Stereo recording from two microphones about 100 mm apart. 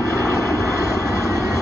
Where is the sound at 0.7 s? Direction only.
30° left (ahead or behind).